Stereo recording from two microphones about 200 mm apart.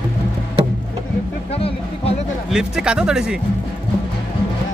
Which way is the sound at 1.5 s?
30° left (ahead or behind).